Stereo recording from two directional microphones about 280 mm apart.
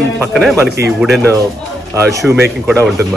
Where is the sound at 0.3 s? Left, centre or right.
Centre.